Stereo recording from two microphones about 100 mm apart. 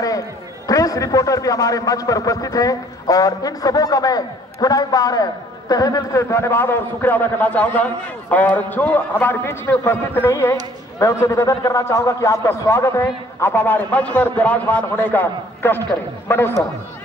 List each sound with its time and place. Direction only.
0.7 s a man's voice: 35° left (ahead or behind)